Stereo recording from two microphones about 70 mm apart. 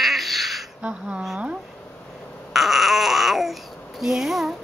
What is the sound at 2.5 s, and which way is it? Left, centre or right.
Babbling, centre.